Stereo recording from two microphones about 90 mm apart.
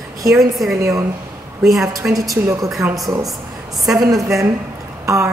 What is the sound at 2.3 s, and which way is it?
Speech, 40° right (ahead or behind).